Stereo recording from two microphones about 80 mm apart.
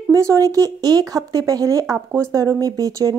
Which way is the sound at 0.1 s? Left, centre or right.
Right.